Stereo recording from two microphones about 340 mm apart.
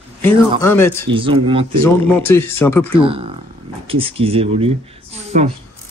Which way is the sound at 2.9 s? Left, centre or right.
Centre.